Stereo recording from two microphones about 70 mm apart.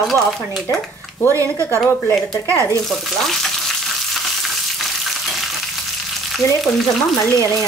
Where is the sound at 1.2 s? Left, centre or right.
Right.